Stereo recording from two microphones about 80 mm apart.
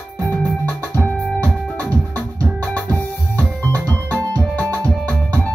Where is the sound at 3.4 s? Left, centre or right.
Left.